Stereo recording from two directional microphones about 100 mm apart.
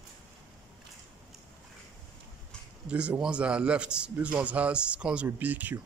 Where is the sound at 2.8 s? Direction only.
10° right (ahead or behind).